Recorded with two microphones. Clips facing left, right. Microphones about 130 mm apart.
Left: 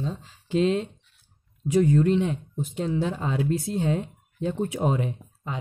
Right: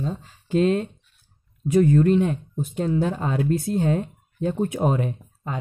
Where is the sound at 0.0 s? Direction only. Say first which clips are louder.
Right 3 dB; 50° right (ahead or behind).